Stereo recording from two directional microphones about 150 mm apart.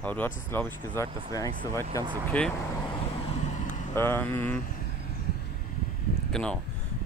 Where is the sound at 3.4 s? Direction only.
55° left (ahead or behind).